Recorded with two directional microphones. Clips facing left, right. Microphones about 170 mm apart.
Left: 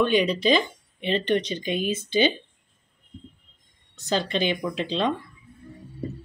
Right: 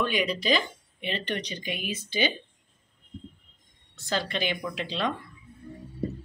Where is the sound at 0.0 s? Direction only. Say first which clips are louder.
Left 7 dB; 25° left (ahead or behind).